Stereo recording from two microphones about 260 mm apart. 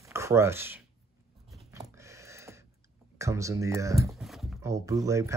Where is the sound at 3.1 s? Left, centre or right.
Centre.